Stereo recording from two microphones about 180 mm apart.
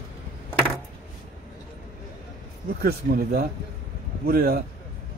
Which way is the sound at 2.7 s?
55° right (ahead or behind).